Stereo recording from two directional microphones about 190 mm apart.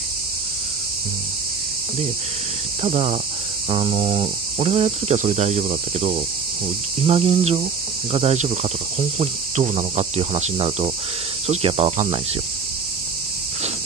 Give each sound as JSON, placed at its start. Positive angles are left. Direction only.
{"t": 2.8, "sound": "cricket", "side_deg": -30}